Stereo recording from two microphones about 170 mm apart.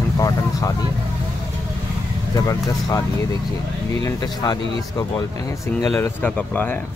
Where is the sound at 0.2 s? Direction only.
20° left (ahead or behind).